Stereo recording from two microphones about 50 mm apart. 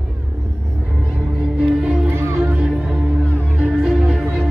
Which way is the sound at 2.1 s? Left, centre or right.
Right.